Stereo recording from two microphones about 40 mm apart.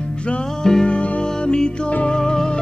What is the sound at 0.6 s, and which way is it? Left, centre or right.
Music, centre.